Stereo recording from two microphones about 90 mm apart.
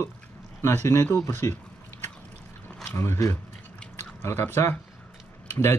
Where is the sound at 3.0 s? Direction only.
35° left (ahead or behind).